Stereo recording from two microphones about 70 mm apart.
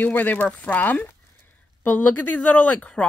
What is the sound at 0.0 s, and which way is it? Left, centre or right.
Speech, left.